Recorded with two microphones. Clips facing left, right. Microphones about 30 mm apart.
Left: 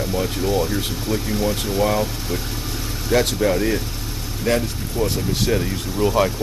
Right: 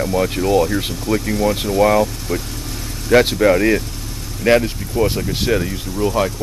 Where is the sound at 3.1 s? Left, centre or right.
Right.